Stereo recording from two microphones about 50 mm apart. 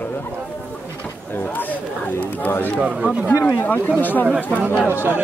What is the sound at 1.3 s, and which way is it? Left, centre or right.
Speech, left.